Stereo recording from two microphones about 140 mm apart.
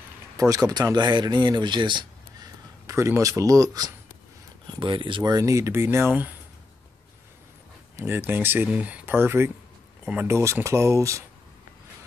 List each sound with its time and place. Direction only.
0.4 s speech: 25° right (ahead or behind)
2.9 s speech: 20° right (ahead or behind)
4.7 s speech: 35° right (ahead or behind); by 6.3 s 15° right (ahead or behind)
7.9 s speech: 15° right (ahead or behind)